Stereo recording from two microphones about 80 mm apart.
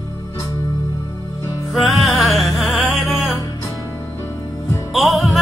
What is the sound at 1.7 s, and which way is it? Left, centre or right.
Music, centre.